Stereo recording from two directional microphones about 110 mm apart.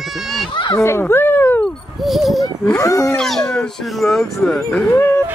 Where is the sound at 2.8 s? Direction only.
30° left (ahead or behind).